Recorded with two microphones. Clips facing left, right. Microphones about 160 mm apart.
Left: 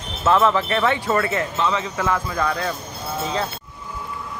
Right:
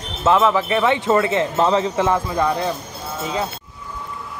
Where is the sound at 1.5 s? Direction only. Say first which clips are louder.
Right 6 dB; 35° right (ahead or behind); by 2.7 s 20° right (ahead or behind).